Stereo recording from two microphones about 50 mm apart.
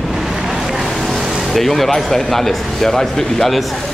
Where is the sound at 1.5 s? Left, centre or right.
Centre.